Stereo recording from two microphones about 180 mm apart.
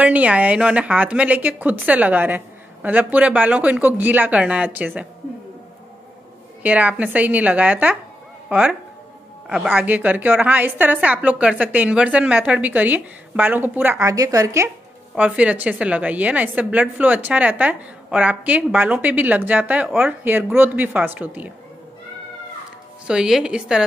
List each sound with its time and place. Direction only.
0.0 s a woman's voice: 5° right (ahead or behind)
6.6 s a woman's voice: 10° right (ahead or behind)
23.0 s a woman's voice: 5° right (ahead or behind)